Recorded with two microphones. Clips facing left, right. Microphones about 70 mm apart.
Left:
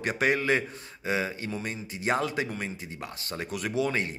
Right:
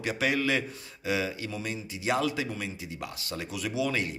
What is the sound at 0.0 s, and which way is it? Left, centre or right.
A man's voice, left.